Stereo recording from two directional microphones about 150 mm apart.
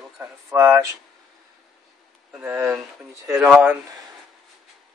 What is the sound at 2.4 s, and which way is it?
Speech, 10° right (ahead or behind).